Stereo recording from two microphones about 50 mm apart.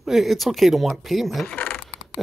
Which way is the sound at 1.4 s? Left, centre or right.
Left.